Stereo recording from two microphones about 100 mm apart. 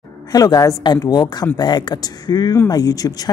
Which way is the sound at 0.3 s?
40° left (ahead or behind).